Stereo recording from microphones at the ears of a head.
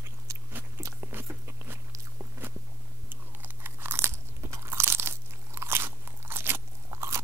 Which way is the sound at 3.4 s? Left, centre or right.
Right.